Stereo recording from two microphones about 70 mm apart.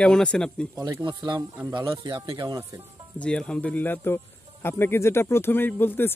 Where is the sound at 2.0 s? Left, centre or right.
Right.